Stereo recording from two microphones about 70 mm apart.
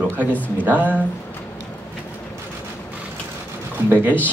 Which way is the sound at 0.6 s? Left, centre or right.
Right.